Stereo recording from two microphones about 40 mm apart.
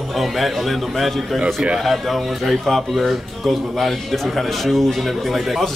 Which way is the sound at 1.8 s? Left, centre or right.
Centre.